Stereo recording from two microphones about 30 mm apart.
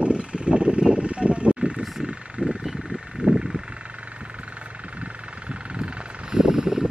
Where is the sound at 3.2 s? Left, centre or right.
Right.